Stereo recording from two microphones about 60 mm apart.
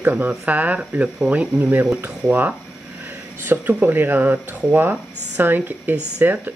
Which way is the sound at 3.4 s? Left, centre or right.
Right.